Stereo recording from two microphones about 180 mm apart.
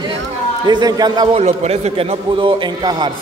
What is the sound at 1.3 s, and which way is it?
A man's voice, 35° right (ahead or behind).